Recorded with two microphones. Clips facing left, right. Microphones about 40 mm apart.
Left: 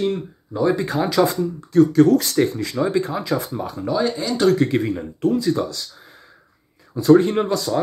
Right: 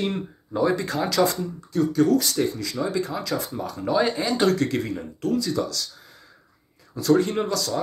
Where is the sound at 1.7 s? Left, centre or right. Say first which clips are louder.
Left 6 dB; left; by 3.8 s centre.